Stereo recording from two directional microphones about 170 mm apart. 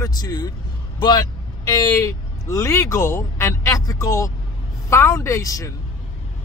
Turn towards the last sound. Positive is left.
turn(degrees=20)  # may be behind; listen again after turning